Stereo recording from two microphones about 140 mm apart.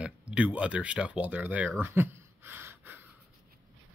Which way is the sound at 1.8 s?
15° right (ahead or behind).